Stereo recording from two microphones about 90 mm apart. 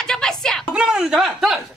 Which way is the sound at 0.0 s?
5° left (ahead or behind).